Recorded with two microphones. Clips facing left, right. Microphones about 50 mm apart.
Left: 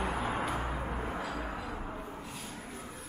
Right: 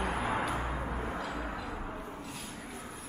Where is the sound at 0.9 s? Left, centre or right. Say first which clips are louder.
Even; centre.